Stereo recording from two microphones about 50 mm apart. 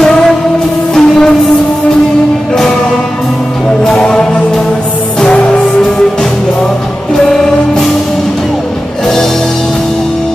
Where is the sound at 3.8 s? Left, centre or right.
Centre.